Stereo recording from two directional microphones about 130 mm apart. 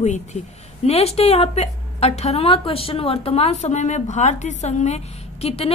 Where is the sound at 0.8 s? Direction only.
50° left (ahead or behind).